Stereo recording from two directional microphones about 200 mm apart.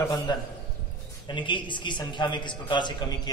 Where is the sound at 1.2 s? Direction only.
25° left (ahead or behind).